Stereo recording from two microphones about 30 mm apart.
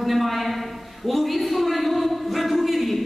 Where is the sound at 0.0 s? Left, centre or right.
Centre.